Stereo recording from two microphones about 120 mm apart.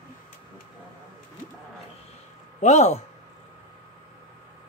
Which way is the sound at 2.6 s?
75° left (ahead or behind).